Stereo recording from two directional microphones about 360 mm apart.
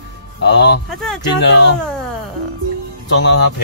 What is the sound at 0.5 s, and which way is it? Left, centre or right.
Speech, left.